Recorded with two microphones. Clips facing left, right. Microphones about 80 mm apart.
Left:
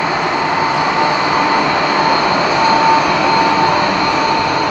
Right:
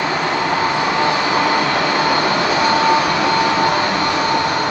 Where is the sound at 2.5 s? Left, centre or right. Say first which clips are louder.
Left 4 dB; left.